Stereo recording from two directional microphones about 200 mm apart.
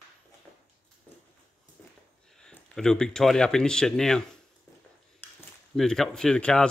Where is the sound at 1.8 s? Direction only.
5° left (ahead or behind).